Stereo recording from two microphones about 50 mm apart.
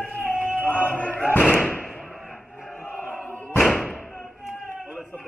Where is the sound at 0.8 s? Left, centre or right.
Left.